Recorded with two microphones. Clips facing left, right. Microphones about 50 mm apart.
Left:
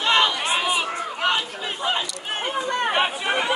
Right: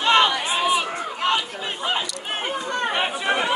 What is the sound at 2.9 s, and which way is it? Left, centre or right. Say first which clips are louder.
Chatter: right 2 dB; centre.